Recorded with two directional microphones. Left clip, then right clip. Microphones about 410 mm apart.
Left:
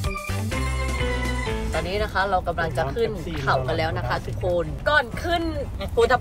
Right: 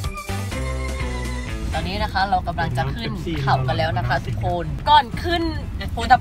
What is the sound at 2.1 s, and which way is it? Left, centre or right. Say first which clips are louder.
Speech: right 3 dB; left.